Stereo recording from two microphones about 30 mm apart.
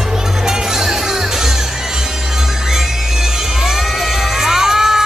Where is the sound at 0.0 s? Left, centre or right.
Centre.